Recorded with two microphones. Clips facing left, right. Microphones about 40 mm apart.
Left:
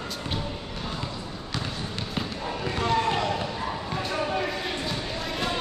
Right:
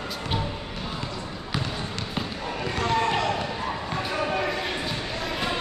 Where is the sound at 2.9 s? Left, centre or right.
Centre.